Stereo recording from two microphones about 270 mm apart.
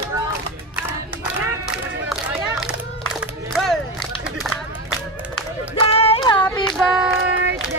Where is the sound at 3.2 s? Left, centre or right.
Centre.